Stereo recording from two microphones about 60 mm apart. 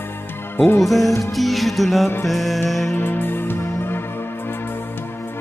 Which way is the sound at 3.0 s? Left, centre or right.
Left.